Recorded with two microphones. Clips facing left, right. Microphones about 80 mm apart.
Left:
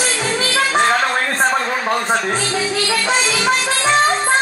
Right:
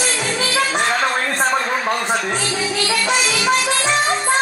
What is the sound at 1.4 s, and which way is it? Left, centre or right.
Speech, left.